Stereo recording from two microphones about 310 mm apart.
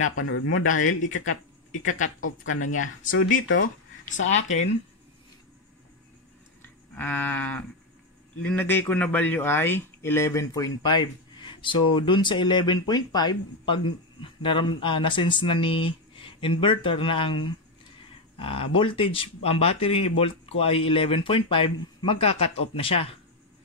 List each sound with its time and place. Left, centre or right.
0.0 s speech: left
3.6 s speech: left
7.0 s sheep: centre
8.4 s speech: centre